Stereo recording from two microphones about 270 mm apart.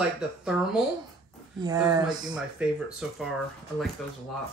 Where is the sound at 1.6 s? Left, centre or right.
Centre.